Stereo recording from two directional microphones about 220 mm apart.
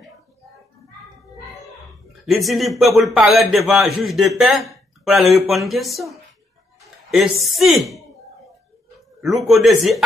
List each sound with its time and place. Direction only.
2.2 s a man's voice: centre (ahead or behind)
7.1 s a man's voice: centre (ahead or behind)
9.2 s a man's voice: centre (ahead or behind)